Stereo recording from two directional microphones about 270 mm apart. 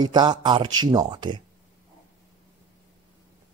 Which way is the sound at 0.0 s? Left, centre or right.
Centre.